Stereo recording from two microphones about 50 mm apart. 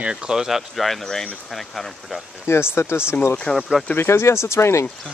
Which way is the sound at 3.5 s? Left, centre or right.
Centre.